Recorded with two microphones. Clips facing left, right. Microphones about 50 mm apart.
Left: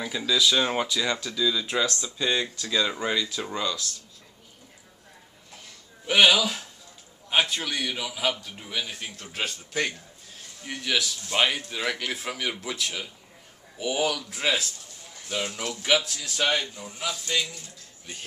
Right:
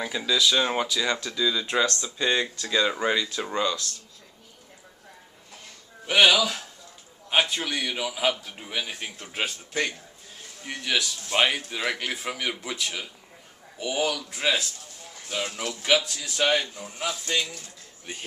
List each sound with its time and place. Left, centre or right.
0.0 s a man's voice: centre
6.0 s a man's voice: centre
15.8 s speech: centre
16.7 s a man's voice: centre